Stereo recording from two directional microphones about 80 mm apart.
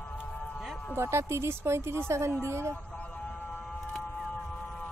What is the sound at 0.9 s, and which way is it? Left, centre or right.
Speech, right.